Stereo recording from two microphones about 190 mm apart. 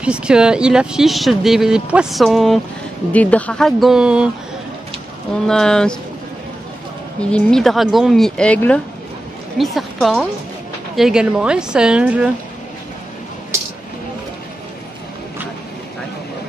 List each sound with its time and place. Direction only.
0.0 s speech: 5° right (ahead or behind)
5.5 s speech: 5° left (ahead or behind)
7.2 s a woman's voice: 5° left (ahead or behind)